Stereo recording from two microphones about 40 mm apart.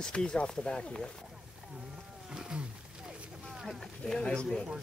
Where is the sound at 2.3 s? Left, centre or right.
Centre.